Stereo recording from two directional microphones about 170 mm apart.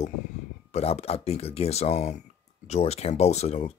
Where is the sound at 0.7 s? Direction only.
40° left (ahead or behind).